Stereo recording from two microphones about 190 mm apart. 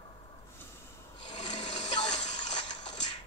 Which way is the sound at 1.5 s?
25° left (ahead or behind).